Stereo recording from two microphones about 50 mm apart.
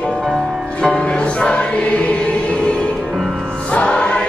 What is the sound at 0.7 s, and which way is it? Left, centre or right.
Music, centre.